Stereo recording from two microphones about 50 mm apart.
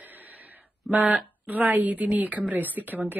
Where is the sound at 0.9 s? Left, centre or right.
Right.